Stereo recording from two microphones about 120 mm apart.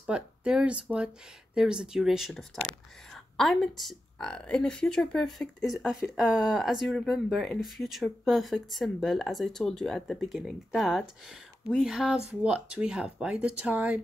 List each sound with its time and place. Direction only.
0.0 s speech: 10° right (ahead or behind)